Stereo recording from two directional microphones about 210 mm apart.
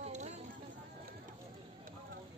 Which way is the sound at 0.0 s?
35° right (ahead or behind).